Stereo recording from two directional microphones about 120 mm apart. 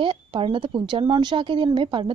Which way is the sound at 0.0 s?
45° right (ahead or behind).